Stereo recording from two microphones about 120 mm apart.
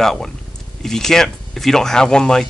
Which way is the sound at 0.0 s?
5° left (ahead or behind).